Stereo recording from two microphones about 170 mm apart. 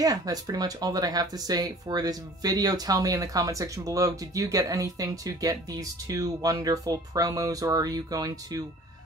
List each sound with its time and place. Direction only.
0.0 s speech: 20° right (ahead or behind)